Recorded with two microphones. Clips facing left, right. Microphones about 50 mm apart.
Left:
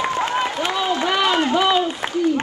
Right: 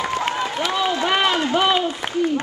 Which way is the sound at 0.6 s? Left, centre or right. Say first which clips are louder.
Even; left.